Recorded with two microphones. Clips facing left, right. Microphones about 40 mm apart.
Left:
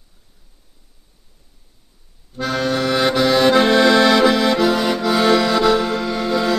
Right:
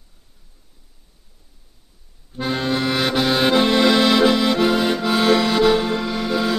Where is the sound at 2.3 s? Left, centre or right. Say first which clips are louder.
Left 2 dB; centre.